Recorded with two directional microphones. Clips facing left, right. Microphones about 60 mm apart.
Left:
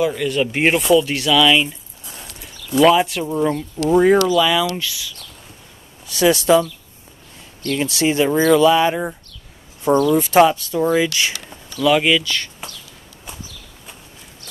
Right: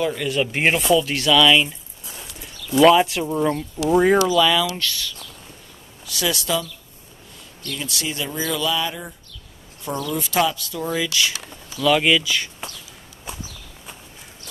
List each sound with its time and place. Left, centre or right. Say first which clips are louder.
0.0 s speech: left 3 dB; centre
2.8 s speech: even; centre
6.0 s speech: left 9 dB; left
7.7 s speech: left 10 dB; left
10.1 s speech: left 4 dB; left
11.8 s speech: left 2 dB; centre